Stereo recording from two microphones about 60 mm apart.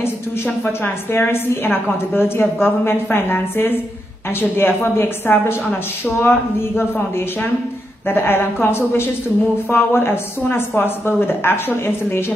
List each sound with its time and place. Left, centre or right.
0.8 s a woman's voice: left
8.1 s a woman's voice: left